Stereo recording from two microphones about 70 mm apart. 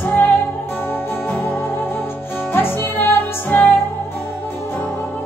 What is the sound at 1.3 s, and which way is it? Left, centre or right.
Music, left.